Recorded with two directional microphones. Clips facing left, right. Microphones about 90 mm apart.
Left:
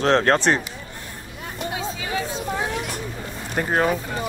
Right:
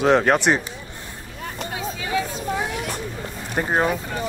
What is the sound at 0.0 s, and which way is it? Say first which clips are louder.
Speech: right 1 dB; 10° right (ahead or behind).